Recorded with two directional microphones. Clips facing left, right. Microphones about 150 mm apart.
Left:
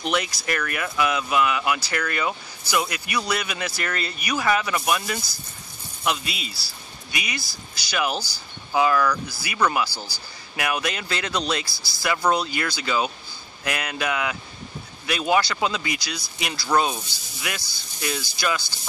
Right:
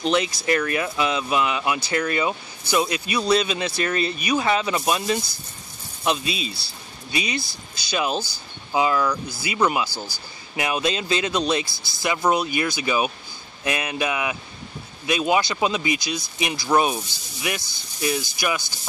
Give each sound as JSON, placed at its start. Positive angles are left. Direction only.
{"t": 0.0, "sound": "speech", "side_deg": -20}
{"t": 11.6, "sound": "speech", "side_deg": -50}
{"t": 12.0, "sound": "speech", "side_deg": -20}